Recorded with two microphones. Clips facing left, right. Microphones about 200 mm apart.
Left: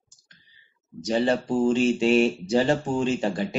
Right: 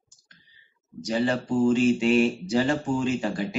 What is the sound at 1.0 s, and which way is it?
Speech, 25° left (ahead or behind).